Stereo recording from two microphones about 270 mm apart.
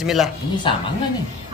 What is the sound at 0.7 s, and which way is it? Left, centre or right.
Speech, centre.